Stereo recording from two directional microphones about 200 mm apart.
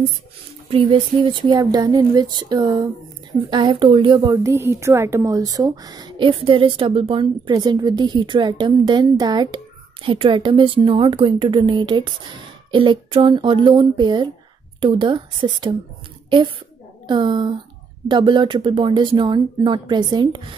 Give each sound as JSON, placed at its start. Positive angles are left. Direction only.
{"t": 0.7, "sound": "a woman's voice", "side_deg": -25}